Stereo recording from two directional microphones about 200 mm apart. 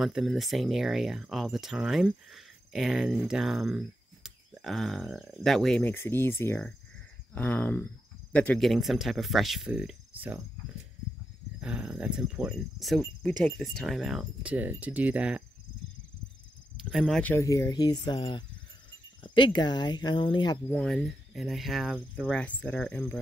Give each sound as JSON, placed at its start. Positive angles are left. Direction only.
{"t": 0.0, "sound": "speech", "side_deg": 0}
{"t": 11.6, "sound": "speech", "side_deg": -5}
{"t": 16.7, "sound": "speech", "side_deg": 0}
{"t": 20.6, "sound": "speech", "side_deg": 5}